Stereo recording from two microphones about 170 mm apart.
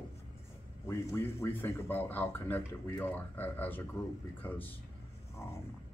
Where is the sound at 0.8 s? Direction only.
15° left (ahead or behind).